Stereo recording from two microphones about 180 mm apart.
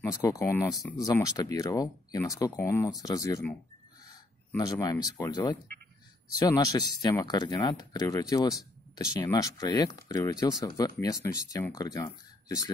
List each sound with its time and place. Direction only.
0.0 s speech: 20° left (ahead or behind)
4.6 s speech: 20° left (ahead or behind)